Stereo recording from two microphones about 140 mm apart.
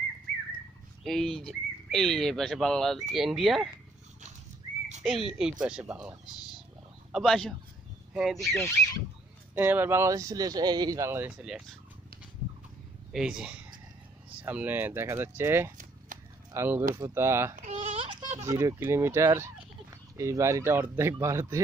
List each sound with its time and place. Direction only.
1.0 s speech: centre (ahead or behind)
5.4 s speech: 5° right (ahead or behind)
8.4 s speech: 25° left (ahead or behind)
9.6 s speech: 15° right (ahead or behind)
13.1 s speech: 5° right (ahead or behind)
16.1 s a sound: 65° right (ahead or behind)
16.5 s speech: 15° right (ahead or behind)
17.6 s a sound: 55° right (ahead or behind)
18.4 s speech: 20° right (ahead or behind)